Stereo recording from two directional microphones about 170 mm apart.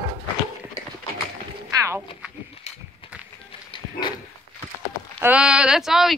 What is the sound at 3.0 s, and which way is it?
Music, 30° left (ahead or behind).